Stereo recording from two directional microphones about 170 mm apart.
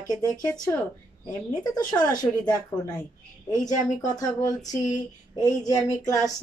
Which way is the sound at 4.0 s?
20° left (ahead or behind).